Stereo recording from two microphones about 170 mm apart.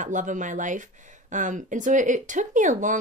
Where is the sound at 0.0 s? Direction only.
50° right (ahead or behind).